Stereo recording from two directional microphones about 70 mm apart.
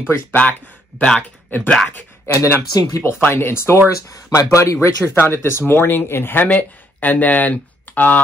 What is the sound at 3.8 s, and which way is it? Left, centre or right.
Speech, left.